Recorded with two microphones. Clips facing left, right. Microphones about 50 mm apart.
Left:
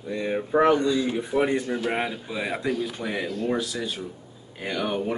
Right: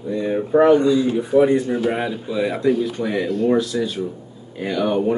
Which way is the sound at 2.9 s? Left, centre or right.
Centre.